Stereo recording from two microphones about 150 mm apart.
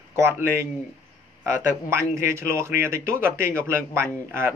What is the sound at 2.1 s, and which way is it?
Speech, 20° right (ahead or behind).